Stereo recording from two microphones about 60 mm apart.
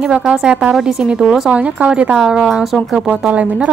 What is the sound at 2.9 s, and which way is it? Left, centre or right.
Speech, right.